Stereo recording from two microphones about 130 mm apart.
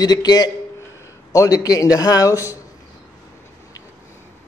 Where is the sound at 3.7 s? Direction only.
25° left (ahead or behind).